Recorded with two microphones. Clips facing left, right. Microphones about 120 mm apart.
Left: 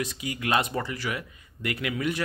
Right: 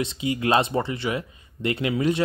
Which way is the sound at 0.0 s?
25° right (ahead or behind).